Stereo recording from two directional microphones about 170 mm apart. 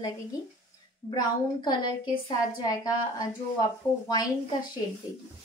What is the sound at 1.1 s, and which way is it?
A woman's voice, 25° left (ahead or behind).